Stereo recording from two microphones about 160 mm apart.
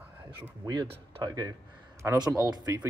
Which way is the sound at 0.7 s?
25° right (ahead or behind).